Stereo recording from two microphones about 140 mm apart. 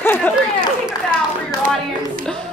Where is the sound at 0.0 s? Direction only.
15° left (ahead or behind).